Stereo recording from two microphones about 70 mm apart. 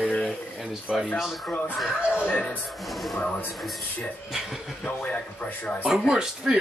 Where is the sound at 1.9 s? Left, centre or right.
Centre.